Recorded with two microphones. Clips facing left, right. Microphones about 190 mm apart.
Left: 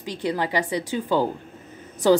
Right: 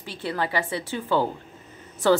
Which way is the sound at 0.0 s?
15° left (ahead or behind).